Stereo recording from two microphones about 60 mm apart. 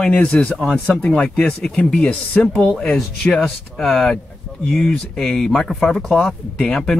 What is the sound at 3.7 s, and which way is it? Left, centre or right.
Speech, centre.